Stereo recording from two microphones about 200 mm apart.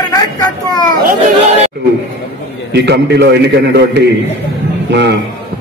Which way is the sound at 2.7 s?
55° right (ahead or behind).